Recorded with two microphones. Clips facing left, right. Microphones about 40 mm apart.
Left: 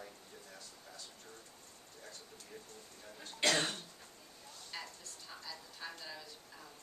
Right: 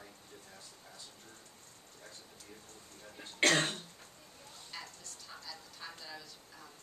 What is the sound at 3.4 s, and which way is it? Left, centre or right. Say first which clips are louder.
Cough: right 4 dB; right.